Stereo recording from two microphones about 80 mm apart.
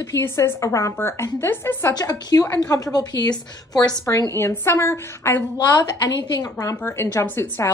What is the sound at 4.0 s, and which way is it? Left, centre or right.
A woman's voice, left.